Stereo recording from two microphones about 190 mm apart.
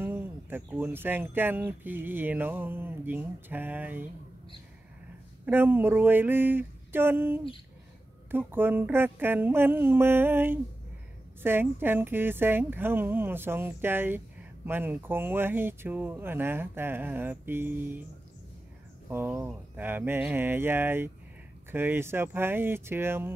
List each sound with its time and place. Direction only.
0.0 s speech: 10° right (ahead or behind)
5.4 s speech: 10° right (ahead or behind)
19.0 s speech: 10° right (ahead or behind)